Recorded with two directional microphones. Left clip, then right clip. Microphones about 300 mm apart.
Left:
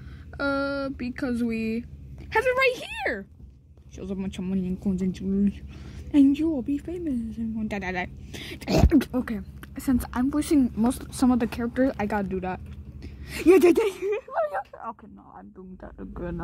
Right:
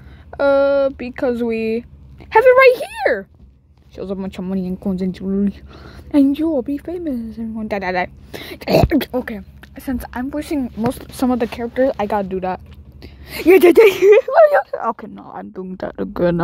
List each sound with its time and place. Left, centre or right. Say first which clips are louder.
0.3 s a woman's voice: right 13 dB; centre; by 16.3 s right